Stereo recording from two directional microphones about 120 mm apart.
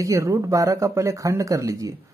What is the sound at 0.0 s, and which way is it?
Speech, 25° right (ahead or behind).